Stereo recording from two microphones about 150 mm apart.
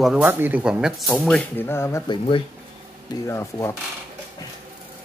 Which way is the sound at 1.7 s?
15° left (ahead or behind).